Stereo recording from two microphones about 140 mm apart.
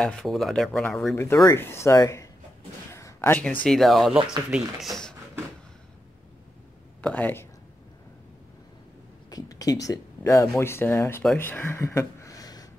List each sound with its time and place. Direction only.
0.0 s speech: 5° left (ahead or behind)
1.1 s speech: 20° left (ahead or behind); by 5.1 s centre (ahead or behind)
7.0 s speech: 10° left (ahead or behind)
9.3 s speech: 25° left (ahead or behind)